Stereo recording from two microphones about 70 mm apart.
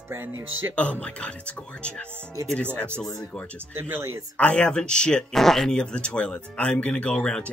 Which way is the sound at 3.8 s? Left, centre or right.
Right.